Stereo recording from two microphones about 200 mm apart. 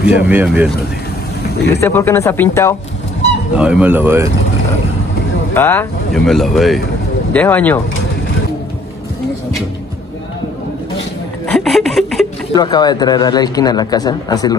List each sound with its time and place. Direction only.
0.0 s speech: 5° right (ahead or behind)
1.8 s speech: 10° left (ahead or behind)
3.5 s speech: 5° right (ahead or behind)
5.5 s speech: 10° left (ahead or behind)
11.4 s a sound: centre (ahead or behind)
12.5 s speech: 20° left (ahead or behind)